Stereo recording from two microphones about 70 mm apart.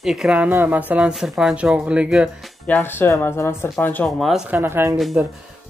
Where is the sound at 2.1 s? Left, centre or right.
Centre.